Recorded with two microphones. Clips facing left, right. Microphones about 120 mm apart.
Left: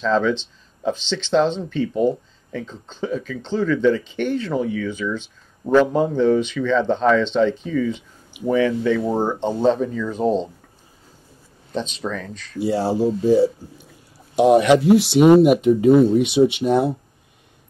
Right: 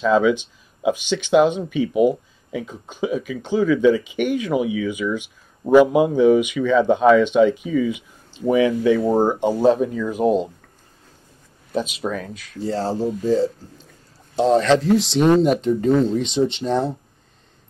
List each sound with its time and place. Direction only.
0.0 s speech: 10° right (ahead or behind)
11.7 s speech: 10° right (ahead or behind)
12.5 s speech: 10° left (ahead or behind)